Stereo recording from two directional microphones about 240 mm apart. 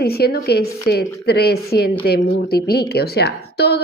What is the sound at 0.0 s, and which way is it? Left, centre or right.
Speech, left.